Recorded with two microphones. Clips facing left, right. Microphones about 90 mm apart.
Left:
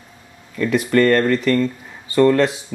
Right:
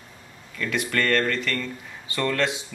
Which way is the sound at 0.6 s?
35° left (ahead or behind).